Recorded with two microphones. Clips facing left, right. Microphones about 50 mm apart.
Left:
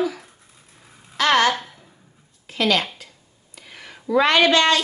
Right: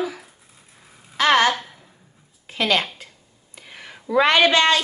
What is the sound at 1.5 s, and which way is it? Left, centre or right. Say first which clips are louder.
Speech: even; centre.